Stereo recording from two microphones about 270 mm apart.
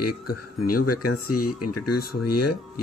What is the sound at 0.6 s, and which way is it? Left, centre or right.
Speech, left.